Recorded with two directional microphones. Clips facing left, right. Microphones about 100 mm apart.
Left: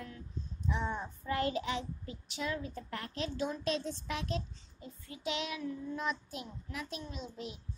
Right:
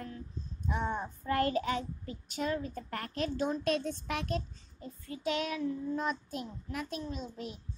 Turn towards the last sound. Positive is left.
turn(degrees=-45)  # may be behind; listen again after turning